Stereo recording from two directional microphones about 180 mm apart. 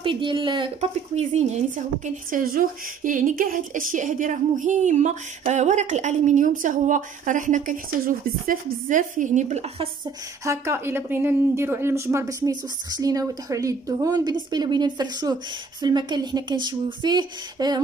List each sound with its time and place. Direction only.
0.0 s speech: 25° right (ahead or behind)
2.0 s speech: 50° right (ahead or behind)
10.4 s a woman's voice: 15° right (ahead or behind)